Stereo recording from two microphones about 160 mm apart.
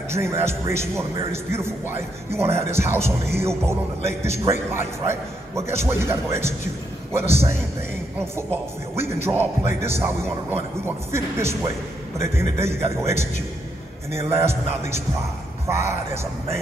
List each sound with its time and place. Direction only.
0.1 s speech: 15° right (ahead or behind)
8.9 s speech: 15° right (ahead or behind)